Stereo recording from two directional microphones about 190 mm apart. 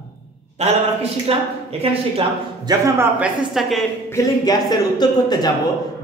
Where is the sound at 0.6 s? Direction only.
35° right (ahead or behind).